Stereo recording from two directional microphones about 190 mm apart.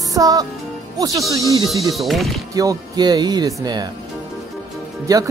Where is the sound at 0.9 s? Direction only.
15° right (ahead or behind).